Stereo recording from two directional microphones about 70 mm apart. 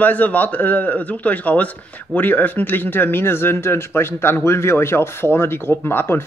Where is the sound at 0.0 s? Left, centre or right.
Left.